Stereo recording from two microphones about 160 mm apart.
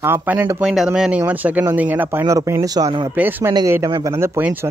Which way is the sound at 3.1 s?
10° right (ahead or behind).